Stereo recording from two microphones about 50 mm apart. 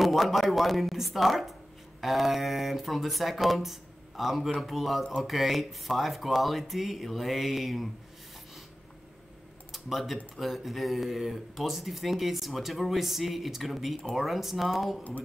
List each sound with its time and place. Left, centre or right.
0.0 s speech: centre
9.7 s typing: centre
10.3 s speech: centre